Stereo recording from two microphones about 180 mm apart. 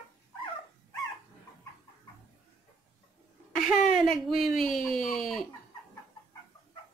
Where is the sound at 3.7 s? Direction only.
Centre (ahead or behind).